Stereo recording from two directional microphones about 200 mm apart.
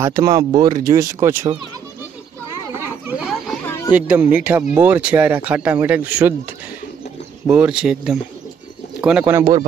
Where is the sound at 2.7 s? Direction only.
10° right (ahead or behind).